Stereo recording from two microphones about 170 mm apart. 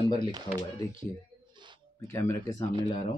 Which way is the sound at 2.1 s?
15° left (ahead or behind).